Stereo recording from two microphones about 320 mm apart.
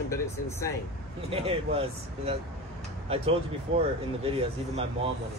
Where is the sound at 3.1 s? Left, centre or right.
Centre.